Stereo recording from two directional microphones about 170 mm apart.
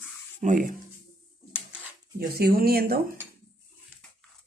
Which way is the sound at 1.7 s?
65° right (ahead or behind).